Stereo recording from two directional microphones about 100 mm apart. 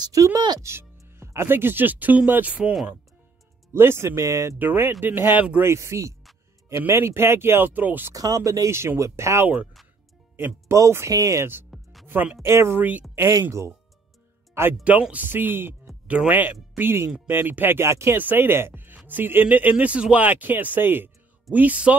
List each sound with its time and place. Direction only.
0.0 s speech: 35° right (ahead or behind); by 2.7 s 15° right (ahead or behind)
3.7 s speech: 25° right (ahead or behind)
5.6 s speech: 25° right (ahead or behind)
8.1 s speech: 35° right (ahead or behind)
11.7 s music: centre (ahead or behind)
12.1 s speech: 20° right (ahead or behind)
13.3 s speech: 35° right (ahead or behind)
14.8 s speech: 10° right (ahead or behind)